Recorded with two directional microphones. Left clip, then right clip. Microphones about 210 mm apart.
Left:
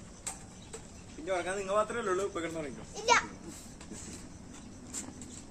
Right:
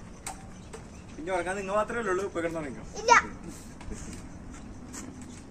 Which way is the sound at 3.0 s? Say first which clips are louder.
Right 6 dB; 15° left (ahead or behind).